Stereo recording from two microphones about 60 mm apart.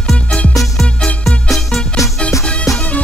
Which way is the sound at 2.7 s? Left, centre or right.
Left.